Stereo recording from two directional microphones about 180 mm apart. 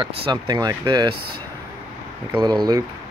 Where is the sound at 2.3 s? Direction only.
25° right (ahead or behind).